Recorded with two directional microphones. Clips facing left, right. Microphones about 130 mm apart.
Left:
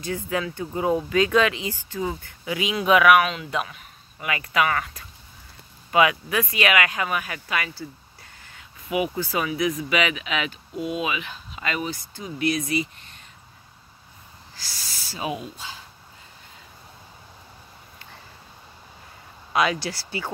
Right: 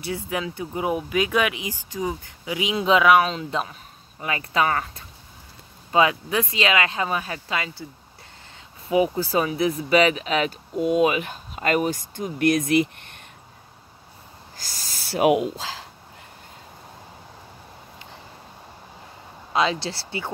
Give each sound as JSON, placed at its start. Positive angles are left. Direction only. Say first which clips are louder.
{"t": 0.0, "sound": "speech", "louder": "left 1 dB", "side_deg": -15}
{"t": 14.6, "sound": "snake", "louder": "right 1 dB", "side_deg": -45}
{"t": 15.0, "sound": "speech", "louder": "right 11 dB", "side_deg": -75}
{"t": 19.5, "sound": "speech", "louder": "even", "side_deg": -25}